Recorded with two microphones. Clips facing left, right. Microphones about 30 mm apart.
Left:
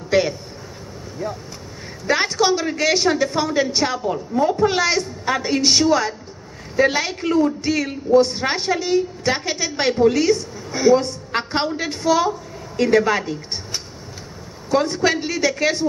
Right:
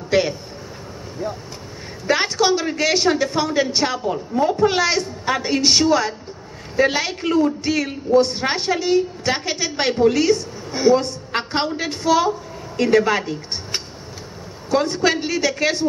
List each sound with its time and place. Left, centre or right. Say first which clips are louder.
0.1 s a man's voice: even; centre
2.0 s a woman's voice: even; centre
14.7 s a woman's voice: even; centre